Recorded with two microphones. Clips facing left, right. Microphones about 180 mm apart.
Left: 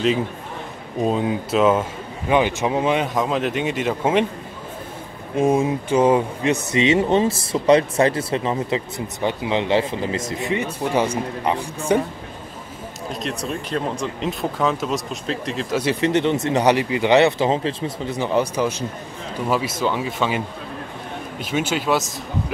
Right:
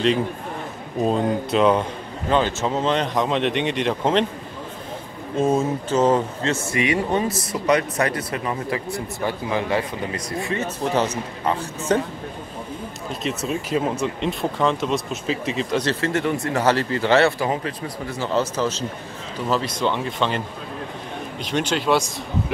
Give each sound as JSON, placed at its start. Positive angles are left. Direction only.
{"t": 1.0, "sound": "a man's voice", "side_deg": 5}
{"t": 5.3, "sound": "speech", "side_deg": 15}
{"t": 13.1, "sound": "a man's voice", "side_deg": 0}
{"t": 21.5, "sound": "a man's voice", "side_deg": 5}